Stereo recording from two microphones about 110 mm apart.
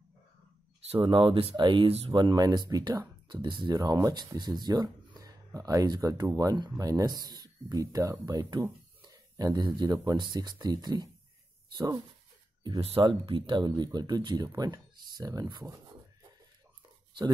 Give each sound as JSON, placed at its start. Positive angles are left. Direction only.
{"t": 0.9, "sound": "speech", "side_deg": -50}
{"t": 12.8, "sound": "speech", "side_deg": -55}